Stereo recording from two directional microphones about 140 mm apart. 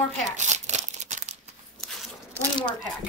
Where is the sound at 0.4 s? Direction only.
55° right (ahead or behind).